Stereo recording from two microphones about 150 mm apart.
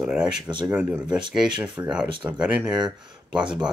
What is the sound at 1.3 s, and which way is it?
Speech, 5° right (ahead or behind).